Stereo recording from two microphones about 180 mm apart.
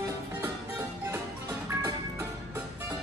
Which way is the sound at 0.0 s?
15° right (ahead or behind).